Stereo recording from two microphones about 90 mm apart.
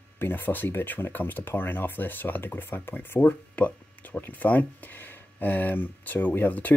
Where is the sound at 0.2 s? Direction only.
20° left (ahead or behind).